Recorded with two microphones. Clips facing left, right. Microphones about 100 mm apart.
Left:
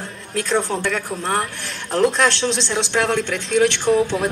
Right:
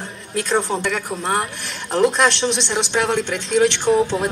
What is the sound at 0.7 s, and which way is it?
A man's voice, 10° right (ahead or behind).